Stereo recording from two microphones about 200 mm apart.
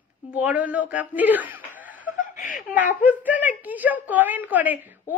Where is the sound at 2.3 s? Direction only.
40° left (ahead or behind).